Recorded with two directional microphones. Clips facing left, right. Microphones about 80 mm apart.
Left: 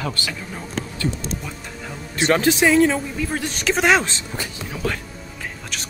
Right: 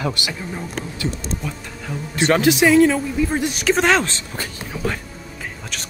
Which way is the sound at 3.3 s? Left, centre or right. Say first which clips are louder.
Right 4 dB; centre.